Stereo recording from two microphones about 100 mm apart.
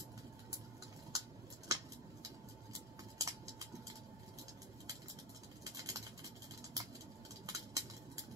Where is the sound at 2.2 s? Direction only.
35° right (ahead or behind).